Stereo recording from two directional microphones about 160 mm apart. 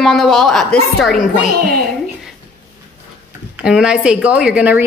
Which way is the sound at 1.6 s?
70° right (ahead or behind).